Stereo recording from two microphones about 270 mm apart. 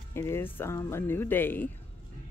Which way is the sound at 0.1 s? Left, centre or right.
Centre.